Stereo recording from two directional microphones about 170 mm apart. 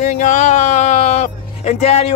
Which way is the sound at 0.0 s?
45° left (ahead or behind).